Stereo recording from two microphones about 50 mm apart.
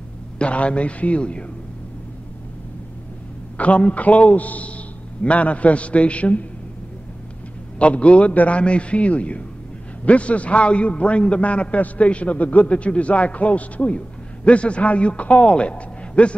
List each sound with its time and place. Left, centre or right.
0.4 s a man's voice: left
3.5 s a man's voice: left
7.8 s a man's voice: left